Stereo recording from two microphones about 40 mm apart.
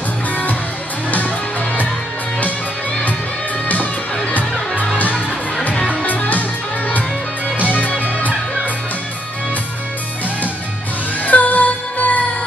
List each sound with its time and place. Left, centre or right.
3.6 s music: left
6.0 s music: left
7.5 s music: left
11.2 s music: left